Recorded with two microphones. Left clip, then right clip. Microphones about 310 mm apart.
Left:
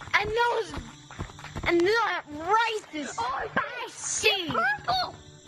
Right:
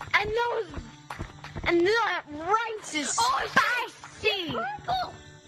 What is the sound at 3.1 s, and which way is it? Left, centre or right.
Speech, right.